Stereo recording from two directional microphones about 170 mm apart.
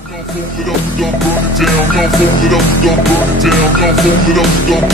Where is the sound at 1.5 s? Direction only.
Centre (ahead or behind).